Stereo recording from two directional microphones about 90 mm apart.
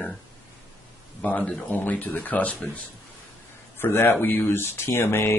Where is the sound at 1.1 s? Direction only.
15° left (ahead or behind).